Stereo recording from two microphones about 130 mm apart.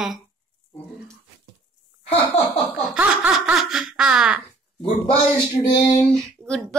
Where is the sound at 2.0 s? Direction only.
50° left (ahead or behind).